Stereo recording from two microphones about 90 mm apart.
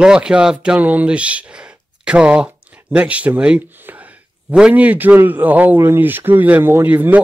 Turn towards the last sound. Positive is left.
turn(degrees=-20)  # may be behind; listen again after turning